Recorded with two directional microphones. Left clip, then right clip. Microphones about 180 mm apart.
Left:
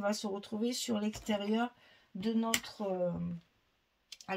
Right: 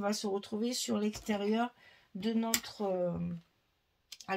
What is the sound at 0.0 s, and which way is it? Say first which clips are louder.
Speech: right 1 dB; 40° right (ahead or behind).